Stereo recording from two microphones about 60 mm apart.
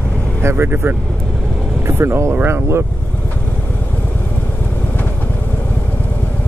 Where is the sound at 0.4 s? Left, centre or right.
Right.